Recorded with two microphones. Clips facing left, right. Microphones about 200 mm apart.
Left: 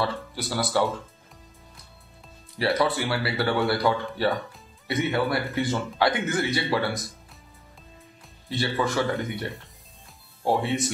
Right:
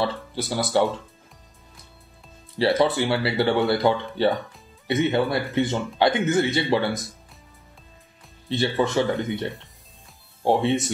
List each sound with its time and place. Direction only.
0.0 s speech: 25° right (ahead or behind)
2.6 s speech: 25° right (ahead or behind)
8.5 s speech: 25° right (ahead or behind)
10.4 s speech: 25° right (ahead or behind)